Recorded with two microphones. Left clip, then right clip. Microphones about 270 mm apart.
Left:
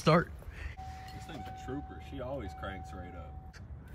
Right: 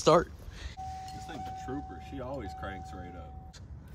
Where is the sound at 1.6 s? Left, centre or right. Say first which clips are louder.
Right 3 dB; right.